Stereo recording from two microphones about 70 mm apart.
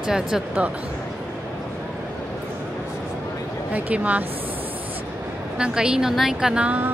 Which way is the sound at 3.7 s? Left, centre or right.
Right.